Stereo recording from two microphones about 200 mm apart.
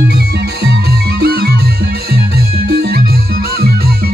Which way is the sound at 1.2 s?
50° right (ahead or behind).